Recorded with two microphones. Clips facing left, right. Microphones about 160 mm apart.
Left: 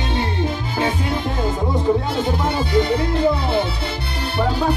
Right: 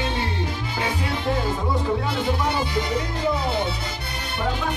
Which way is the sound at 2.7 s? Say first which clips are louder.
Left 7 dB; 60° left (ahead or behind).